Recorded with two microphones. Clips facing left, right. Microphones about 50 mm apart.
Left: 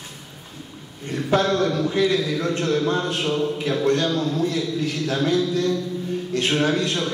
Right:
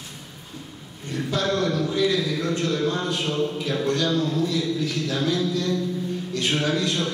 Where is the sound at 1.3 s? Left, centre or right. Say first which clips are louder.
Left 4 dB; left.